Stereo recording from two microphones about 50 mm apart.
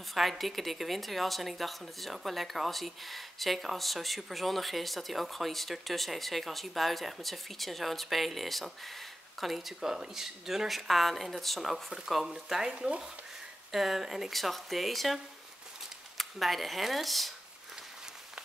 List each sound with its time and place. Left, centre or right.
0.1 s speech: centre
13.7 s speech: centre
16.2 s speech: centre